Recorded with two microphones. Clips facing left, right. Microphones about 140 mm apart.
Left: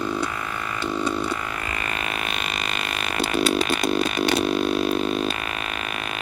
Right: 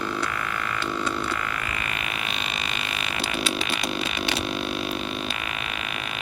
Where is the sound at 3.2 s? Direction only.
45° left (ahead or behind).